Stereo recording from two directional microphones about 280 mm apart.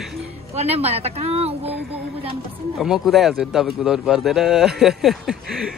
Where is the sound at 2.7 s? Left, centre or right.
Centre.